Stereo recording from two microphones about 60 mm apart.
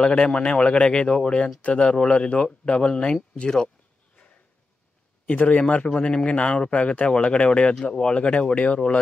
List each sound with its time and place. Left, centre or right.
0.0 s speech: centre
5.2 s speech: left